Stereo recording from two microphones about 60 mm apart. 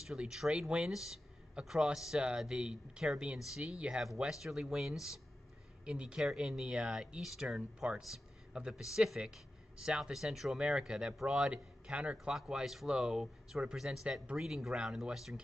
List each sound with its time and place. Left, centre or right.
0.0 s speech: centre
4.2 s speech: centre
10.1 s speech: centre
12.4 s speech: centre